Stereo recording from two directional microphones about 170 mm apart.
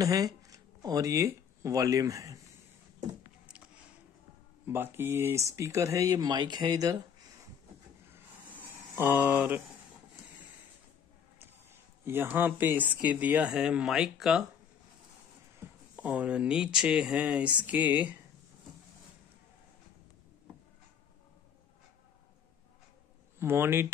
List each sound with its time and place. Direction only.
0.0 s speech: 20° right (ahead or behind)
4.6 s speech: 15° right (ahead or behind)
8.5 s a sound: 10° right (ahead or behind)
12.0 s speech: 15° right (ahead or behind)
15.6 s a sound: 15° right (ahead or behind)
16.0 s speech: 10° right (ahead or behind)
23.4 s speech: 15° right (ahead or behind)